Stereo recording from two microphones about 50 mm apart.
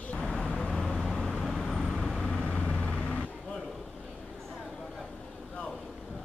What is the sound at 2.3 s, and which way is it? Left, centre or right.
Vehicle, centre.